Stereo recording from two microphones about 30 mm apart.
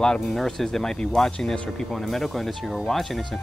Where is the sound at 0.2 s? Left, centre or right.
Centre.